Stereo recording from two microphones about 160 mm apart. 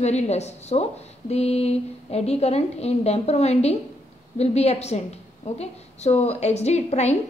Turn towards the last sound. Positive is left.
turn(degrees=45)  # may be behind; listen again after turning